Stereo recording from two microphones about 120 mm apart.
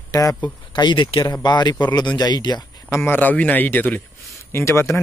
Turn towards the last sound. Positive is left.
turn(degrees=20)  # may be behind; listen again after turning